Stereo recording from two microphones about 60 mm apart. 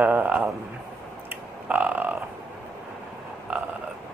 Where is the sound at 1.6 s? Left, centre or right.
Right.